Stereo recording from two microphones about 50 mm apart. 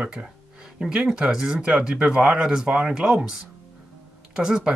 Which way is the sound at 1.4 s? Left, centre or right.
Centre.